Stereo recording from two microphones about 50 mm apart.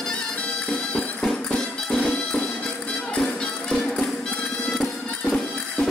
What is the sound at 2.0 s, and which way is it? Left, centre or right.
Music, left.